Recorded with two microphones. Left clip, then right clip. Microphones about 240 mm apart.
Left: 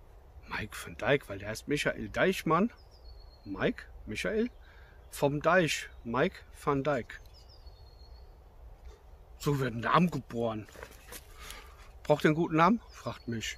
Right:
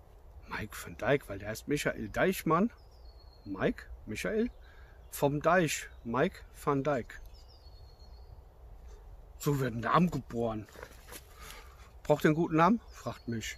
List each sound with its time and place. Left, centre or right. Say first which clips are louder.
0.5 s speech: left 2 dB; centre
9.4 s speech: left 1 dB; centre
11.1 s a sound: left 2 dB; centre